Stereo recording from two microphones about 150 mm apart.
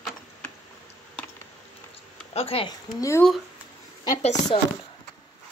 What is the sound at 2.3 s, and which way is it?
Speech, 40° left (ahead or behind).